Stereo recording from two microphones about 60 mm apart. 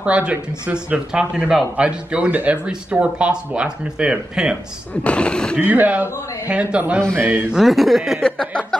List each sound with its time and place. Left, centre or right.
0.0 s speech: right
5.0 s speech: centre
5.6 s speech: right
7.2 s speech: right
7.5 s speech: centre
8.2 s speech: centre